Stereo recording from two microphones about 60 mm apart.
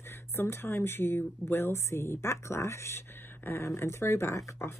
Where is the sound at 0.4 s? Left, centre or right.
Left.